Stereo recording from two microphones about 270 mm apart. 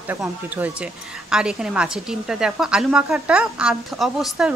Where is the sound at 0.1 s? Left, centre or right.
Centre.